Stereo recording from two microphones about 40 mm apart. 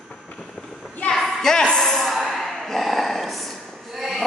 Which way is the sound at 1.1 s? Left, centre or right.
Centre.